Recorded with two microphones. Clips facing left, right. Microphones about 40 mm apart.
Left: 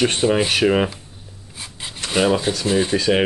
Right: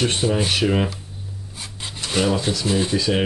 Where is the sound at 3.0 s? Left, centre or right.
Left.